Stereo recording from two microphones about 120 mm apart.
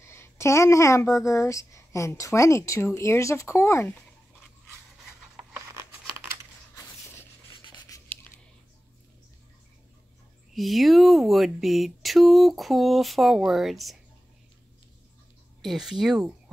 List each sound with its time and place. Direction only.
0.0 s a woman's voice: 20° left (ahead or behind)
7.6 s writing: 35° left (ahead or behind)
10.5 s speech: centre (ahead or behind)
15.6 s speech: centre (ahead or behind)